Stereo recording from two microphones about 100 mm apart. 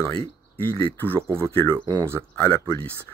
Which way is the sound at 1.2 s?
25° right (ahead or behind).